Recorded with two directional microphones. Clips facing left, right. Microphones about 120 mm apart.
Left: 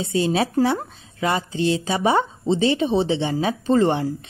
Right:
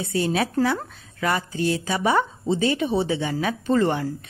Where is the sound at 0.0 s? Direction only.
25° left (ahead or behind).